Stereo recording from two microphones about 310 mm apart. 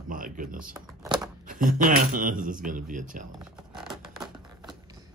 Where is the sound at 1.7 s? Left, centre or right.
Right.